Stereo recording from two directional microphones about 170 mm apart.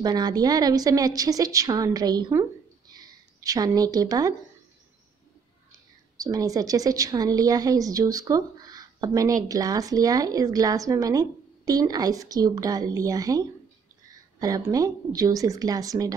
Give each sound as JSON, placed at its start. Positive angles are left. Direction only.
{"t": 0.0, "sound": "a woman's voice", "side_deg": -25}
{"t": 6.1, "sound": "a woman's voice", "side_deg": -20}